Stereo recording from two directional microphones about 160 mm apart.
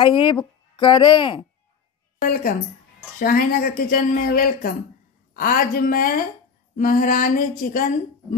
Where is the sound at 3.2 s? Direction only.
65° left (ahead or behind).